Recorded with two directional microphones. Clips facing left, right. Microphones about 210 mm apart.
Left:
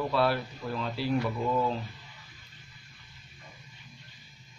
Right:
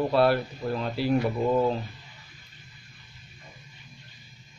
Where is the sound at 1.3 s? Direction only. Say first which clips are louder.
Right 5 dB; 35° right (ahead or behind).